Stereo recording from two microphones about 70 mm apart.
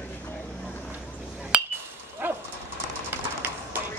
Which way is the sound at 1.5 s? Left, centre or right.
Centre.